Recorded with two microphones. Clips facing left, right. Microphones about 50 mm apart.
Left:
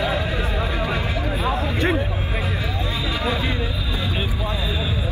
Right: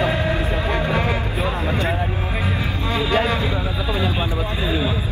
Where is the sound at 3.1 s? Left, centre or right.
Right.